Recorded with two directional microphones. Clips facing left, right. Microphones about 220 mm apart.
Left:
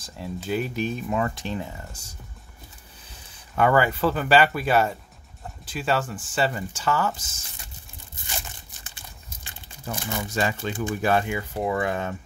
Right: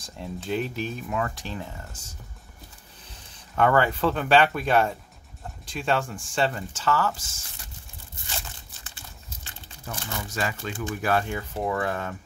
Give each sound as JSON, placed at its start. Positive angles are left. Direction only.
{"t": 0.0, "sound": "speech", "side_deg": 5}
{"t": 0.7, "sound": "speech", "side_deg": 20}
{"t": 3.5, "sound": "speech", "side_deg": 5}
{"t": 8.8, "sound": "a sound", "side_deg": 15}
{"t": 9.9, "sound": "speech", "side_deg": 15}
{"t": 11.2, "sound": "speech", "side_deg": 10}